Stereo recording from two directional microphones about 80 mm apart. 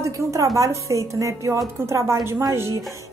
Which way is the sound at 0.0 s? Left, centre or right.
Right.